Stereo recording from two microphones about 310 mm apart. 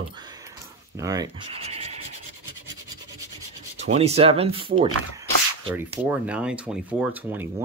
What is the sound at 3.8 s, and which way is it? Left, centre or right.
Speech, right.